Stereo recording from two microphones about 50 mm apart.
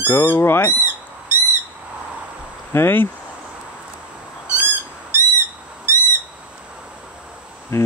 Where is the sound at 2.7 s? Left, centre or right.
Left.